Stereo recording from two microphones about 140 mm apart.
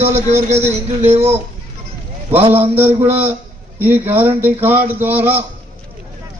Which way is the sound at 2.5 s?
15° right (ahead or behind).